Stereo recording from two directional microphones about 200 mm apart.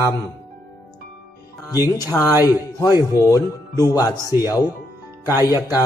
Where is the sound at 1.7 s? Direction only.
20° left (ahead or behind).